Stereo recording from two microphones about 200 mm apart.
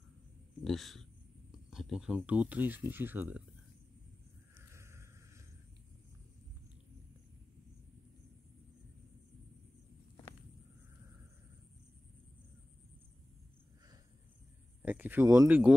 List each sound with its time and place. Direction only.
0.7 s speech: centre (ahead or behind)
4.6 s a sound: 15° right (ahead or behind)
14.8 s speech: 10° right (ahead or behind)